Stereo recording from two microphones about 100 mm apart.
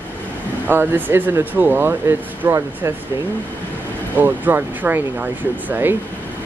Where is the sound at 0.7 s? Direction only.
20° right (ahead or behind).